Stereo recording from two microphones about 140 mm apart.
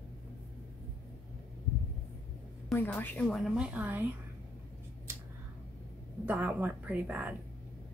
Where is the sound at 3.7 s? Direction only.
10° right (ahead or behind).